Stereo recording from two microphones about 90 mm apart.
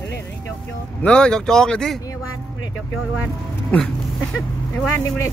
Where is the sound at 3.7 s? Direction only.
15° left (ahead or behind).